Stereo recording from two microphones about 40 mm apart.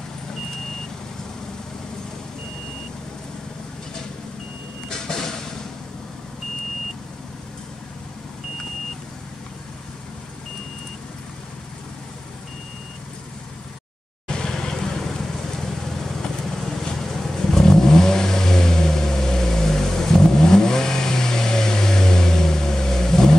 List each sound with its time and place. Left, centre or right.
4.8 s vehicle: centre
14.2 s vehicle: centre